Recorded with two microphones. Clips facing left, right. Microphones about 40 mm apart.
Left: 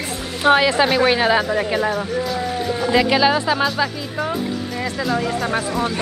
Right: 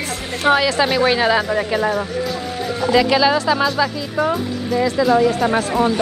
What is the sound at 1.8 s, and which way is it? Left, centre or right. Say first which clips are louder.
Speech: right 2 dB; centre.